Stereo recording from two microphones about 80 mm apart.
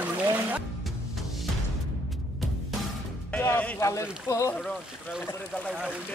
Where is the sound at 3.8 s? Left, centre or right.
Left.